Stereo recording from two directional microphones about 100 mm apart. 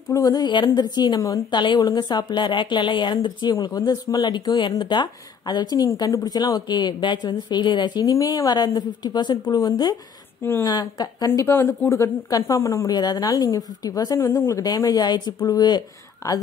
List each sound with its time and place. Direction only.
0.1 s a woman's voice: 40° left (ahead or behind)
11.2 s speech: 25° left (ahead or behind); by 15.8 s 45° left (ahead or behind)